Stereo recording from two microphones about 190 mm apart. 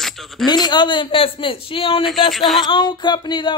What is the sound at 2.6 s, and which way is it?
Speech, 25° left (ahead or behind).